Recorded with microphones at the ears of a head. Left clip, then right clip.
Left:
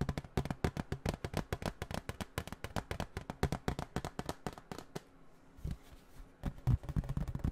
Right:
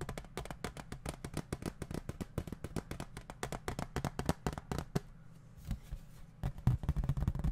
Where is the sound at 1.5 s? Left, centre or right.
Centre.